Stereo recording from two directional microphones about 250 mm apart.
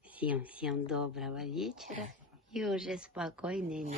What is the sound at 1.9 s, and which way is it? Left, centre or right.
Speech, right.